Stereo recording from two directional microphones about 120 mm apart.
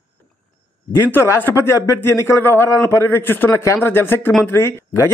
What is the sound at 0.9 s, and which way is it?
A man's voice, 20° left (ahead or behind).